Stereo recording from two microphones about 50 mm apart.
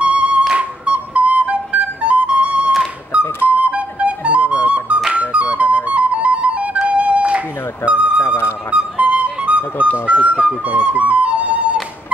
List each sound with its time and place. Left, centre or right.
0.0 s music: right
0.6 s flute: right
3.1 s music: right
8.4 s music: left
8.7 s music: right